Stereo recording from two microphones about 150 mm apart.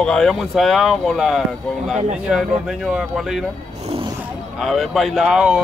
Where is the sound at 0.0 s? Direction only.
5° left (ahead or behind).